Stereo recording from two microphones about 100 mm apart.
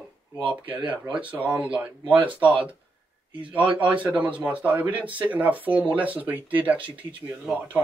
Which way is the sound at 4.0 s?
15° right (ahead or behind).